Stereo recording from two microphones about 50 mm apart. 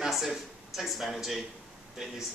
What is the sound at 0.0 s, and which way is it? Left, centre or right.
Speech, centre.